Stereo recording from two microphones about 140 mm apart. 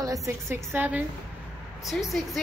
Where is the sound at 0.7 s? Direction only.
10° right (ahead or behind).